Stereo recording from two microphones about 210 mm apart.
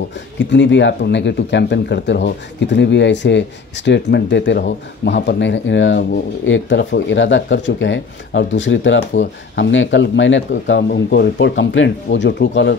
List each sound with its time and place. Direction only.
0.4 s speech: 60° left (ahead or behind)